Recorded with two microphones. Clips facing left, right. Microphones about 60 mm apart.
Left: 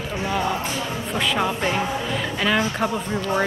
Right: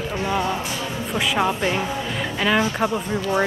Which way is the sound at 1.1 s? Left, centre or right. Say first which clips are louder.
Right 2 dB; centre.